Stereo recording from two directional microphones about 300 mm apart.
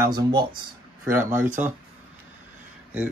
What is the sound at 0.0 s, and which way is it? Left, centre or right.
Speech, centre.